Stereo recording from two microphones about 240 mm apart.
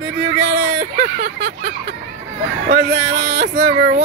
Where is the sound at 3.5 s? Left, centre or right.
Right.